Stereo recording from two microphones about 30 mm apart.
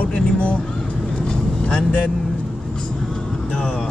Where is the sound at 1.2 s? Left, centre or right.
Left.